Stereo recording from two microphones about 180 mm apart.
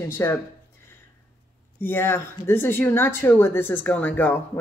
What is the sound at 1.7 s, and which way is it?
Speech, 10° left (ahead or behind).